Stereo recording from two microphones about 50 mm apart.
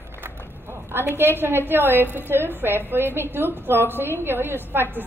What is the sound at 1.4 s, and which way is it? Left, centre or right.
A woman's voice, right.